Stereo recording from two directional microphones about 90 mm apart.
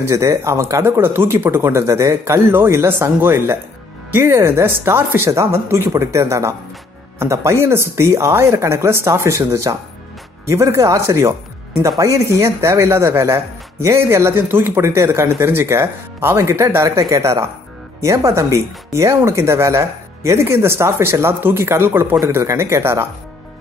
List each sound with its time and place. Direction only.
0.0 s speech: 35° right (ahead or behind)